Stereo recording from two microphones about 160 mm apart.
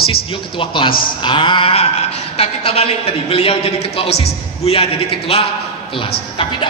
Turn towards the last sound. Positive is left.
turn(degrees=35)  # may be behind; listen again after turning